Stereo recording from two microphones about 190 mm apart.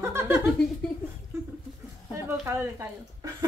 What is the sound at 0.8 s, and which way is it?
Speech, 5° left (ahead or behind).